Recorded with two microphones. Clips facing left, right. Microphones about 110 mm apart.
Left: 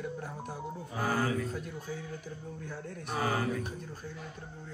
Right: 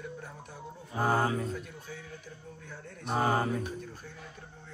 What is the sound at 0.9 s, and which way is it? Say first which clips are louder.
Speech: right 3 dB; 25° right (ahead or behind).